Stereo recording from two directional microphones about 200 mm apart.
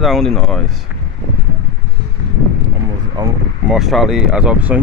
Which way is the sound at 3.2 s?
20° right (ahead or behind).